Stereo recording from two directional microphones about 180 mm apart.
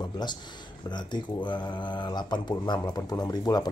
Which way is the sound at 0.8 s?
25° left (ahead or behind).